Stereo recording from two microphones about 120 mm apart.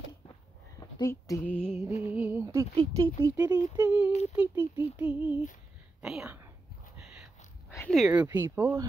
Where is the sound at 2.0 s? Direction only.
15° right (ahead or behind).